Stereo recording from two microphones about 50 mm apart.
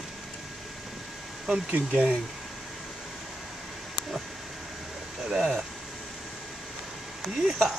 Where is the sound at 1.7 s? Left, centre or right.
Right.